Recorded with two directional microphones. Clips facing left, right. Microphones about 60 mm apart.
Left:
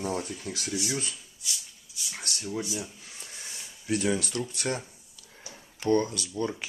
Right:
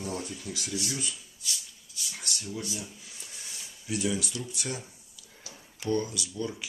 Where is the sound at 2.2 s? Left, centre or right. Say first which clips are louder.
Left 3 dB; left.